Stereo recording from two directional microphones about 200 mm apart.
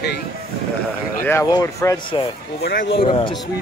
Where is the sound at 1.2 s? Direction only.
15° left (ahead or behind).